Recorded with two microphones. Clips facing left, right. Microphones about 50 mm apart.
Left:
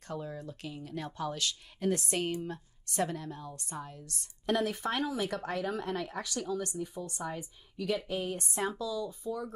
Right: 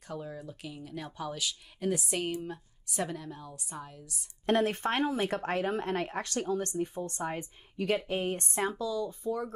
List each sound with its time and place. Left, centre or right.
0.1 s speech: centre
4.5 s speech: right